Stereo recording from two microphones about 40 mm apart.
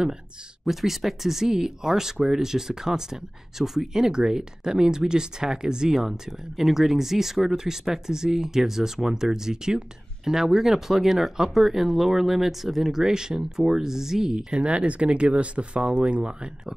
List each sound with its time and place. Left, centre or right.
0.7 s speech: centre
14.5 s speech: right